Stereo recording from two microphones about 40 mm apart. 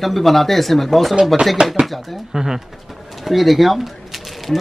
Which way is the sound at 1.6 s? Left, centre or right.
Right.